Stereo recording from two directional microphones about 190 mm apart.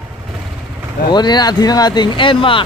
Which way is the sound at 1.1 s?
20° left (ahead or behind).